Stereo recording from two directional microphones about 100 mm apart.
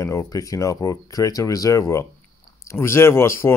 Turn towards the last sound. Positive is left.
turn(degrees=25)  # may be behind; listen again after turning